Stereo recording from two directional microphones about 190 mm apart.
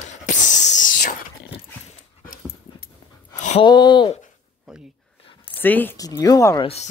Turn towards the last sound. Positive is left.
turn(degrees=15)  # may be behind; listen again after turning